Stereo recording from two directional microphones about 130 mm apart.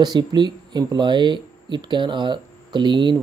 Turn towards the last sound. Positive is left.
turn(degrees=-35)  # may be behind; listen again after turning